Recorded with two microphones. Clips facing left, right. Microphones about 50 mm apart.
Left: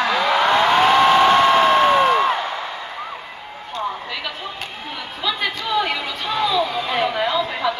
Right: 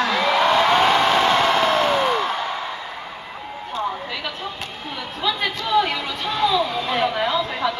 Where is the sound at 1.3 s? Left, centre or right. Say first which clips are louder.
Left 4 dB; left.